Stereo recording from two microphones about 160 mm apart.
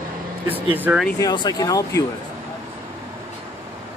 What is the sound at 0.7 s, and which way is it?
Speech, 10° right (ahead or behind).